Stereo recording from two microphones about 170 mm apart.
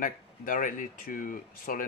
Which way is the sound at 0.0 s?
50° left (ahead or behind).